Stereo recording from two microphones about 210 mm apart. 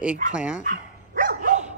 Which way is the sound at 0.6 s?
40° right (ahead or behind).